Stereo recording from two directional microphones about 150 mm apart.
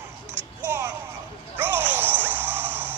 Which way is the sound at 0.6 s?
15° right (ahead or behind).